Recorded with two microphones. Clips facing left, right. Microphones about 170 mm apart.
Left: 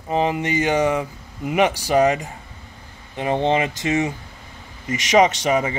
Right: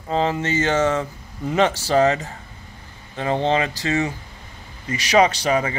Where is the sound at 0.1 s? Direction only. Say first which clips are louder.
Left 1 dB; 15° left (ahead or behind).